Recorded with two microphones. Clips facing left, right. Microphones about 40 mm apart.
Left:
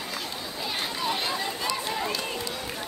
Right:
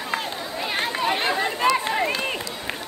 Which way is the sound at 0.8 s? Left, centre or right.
Right.